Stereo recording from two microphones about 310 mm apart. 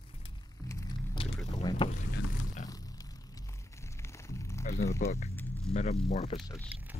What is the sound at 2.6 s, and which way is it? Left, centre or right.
Music, centre.